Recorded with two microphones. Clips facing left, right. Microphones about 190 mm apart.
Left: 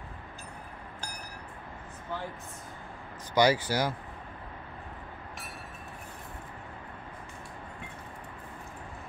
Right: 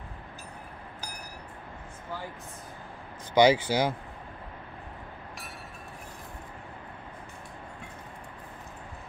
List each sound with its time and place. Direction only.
3.3 s speech: 25° right (ahead or behind)